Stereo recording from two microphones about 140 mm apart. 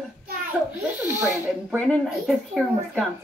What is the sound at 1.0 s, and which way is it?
Speech, 15° right (ahead or behind).